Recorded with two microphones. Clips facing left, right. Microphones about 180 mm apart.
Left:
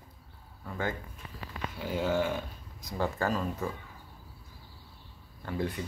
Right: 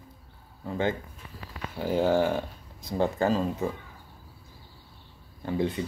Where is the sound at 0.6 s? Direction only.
25° right (ahead or behind).